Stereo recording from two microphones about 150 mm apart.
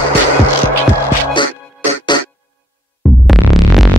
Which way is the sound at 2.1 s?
30° left (ahead or behind).